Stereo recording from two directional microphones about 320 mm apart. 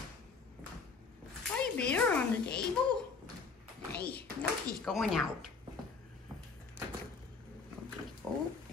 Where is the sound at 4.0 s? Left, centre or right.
Left.